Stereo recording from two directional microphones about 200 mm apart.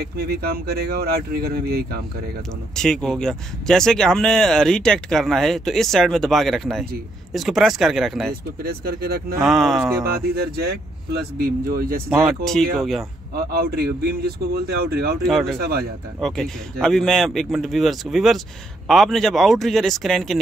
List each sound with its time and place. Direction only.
0.0 s speech: 50° right (ahead or behind)
2.7 s speech: 5° left (ahead or behind)
8.6 s speech: 50° right (ahead or behind)
9.4 s speech: centre (ahead or behind)
10.3 s speech: 50° right (ahead or behind)
12.4 s speech: centre (ahead or behind)
13.4 s speech: 50° right (ahead or behind)
16.2 s speech: centre (ahead or behind)